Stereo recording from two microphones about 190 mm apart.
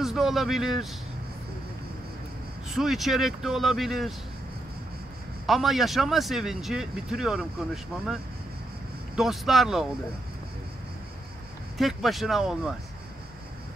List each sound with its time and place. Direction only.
0.0 s speech: centre (ahead or behind)
2.7 s speech: centre (ahead or behind)
5.5 s speech: centre (ahead or behind)
11.8 s speech: centre (ahead or behind)